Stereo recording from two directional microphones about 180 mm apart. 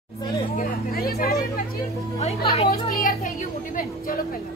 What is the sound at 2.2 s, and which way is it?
Music, 35° left (ahead or behind).